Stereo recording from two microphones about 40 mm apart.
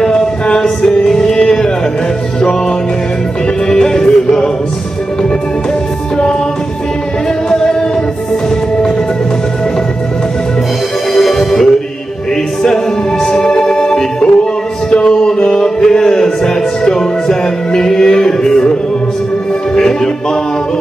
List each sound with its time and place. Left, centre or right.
0.0 s music: centre
3.6 s music: centre
7.4 s singing: centre
11.1 s music: centre
14.9 s a sound: centre
19.7 s music: centre